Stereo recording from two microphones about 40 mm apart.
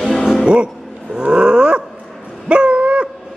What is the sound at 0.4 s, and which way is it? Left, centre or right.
Music, right.